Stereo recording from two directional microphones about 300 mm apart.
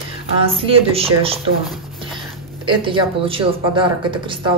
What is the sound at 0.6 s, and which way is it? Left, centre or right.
Speech, centre.